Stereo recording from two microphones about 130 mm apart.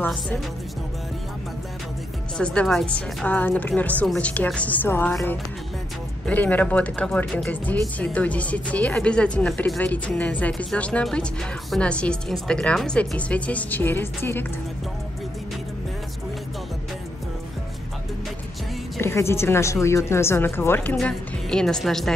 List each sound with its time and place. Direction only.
0.0 s speech: 10° left (ahead or behind)
2.3 s speech: 10° left (ahead or behind)
6.2 s speech: 10° left (ahead or behind)
18.9 s a woman's voice: 20° left (ahead or behind)
21.0 s speech: 5° left (ahead or behind)